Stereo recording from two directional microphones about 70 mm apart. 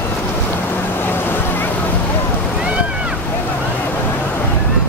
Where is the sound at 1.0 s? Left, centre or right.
Left.